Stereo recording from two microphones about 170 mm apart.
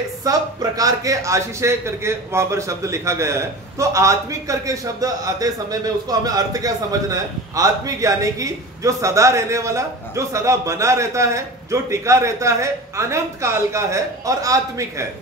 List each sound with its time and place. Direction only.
0.2 s a man's voice: 20° right (ahead or behind)